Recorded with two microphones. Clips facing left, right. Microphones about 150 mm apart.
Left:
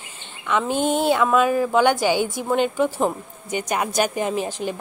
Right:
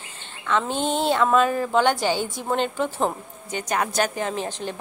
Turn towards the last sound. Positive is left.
turn(degrees=5)  # may be behind; listen again after turning